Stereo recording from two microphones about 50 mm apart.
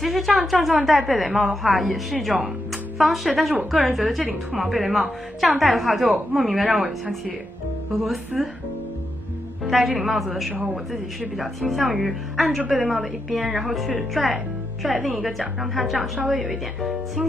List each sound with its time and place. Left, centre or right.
0.0 s speech: centre
8.3 s speech: centre
9.7 s speech: centre
10.5 s a man's voice: right
10.9 s speech: centre